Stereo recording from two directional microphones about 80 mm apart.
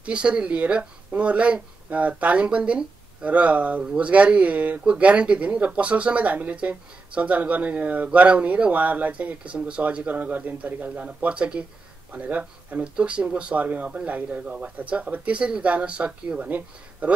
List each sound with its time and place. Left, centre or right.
0.0 s speech: centre